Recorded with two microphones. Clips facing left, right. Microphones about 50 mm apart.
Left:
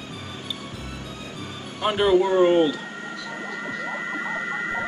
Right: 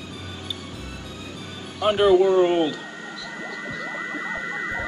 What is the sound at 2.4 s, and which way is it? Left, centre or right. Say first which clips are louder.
Speech: left 3 dB; centre.